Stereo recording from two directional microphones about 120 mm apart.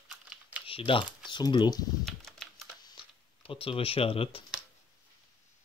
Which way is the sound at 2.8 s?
45° left (ahead or behind).